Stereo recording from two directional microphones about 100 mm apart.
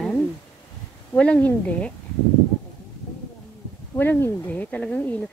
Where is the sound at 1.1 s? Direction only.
15° left (ahead or behind).